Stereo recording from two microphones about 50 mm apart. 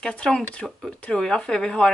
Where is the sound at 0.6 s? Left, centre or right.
Centre.